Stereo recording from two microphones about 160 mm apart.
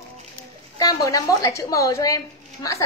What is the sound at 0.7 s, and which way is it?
Speech, 20° left (ahead or behind).